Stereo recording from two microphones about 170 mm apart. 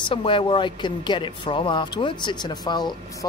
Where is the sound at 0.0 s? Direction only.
30° left (ahead or behind).